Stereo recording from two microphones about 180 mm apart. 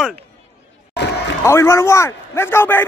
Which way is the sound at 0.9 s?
75° left (ahead or behind).